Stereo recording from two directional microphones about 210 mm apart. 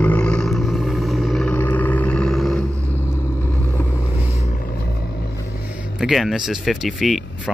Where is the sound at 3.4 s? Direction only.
10° left (ahead or behind).